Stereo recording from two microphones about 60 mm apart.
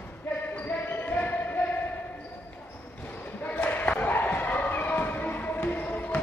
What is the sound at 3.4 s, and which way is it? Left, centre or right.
Basketball bounce, left.